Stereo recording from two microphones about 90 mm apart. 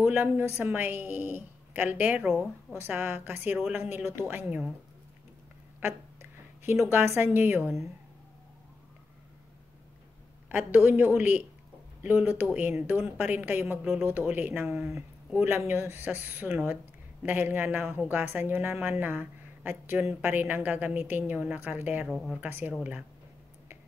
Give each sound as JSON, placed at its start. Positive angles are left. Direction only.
{"t": 0.0, "sound": "speech", "side_deg": -25}
{"t": 6.6, "sound": "speech", "side_deg": -30}
{"t": 10.5, "sound": "speech", "side_deg": -25}
{"t": 22.1, "sound": "speech", "side_deg": 0}
{"t": 22.4, "sound": "speech", "side_deg": -25}
{"t": 22.7, "sound": "speech", "side_deg": -10}